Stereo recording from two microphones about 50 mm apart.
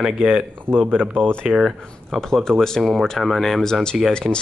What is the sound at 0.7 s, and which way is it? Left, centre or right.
Speech, right.